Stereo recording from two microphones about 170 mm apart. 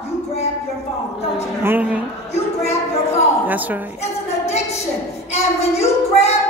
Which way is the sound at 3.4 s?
10° right (ahead or behind).